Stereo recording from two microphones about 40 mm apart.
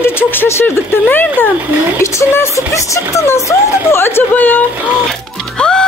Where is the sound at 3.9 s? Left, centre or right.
Left.